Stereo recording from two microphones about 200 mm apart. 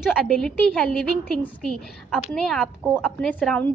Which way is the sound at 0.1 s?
5° left (ahead or behind).